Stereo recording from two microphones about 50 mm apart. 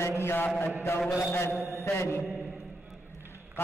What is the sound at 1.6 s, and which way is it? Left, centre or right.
Mantra, left.